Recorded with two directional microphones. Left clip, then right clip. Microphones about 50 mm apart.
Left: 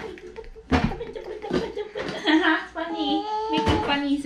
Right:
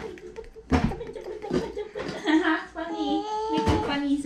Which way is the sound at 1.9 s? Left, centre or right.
Centre.